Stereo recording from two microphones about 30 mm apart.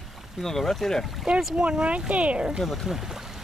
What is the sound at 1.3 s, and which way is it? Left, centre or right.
Speech, right.